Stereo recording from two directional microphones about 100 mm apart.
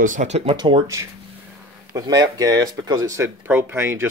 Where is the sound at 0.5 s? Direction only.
50° right (ahead or behind).